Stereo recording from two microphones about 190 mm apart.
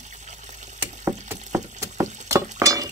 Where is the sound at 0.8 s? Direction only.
15° right (ahead or behind).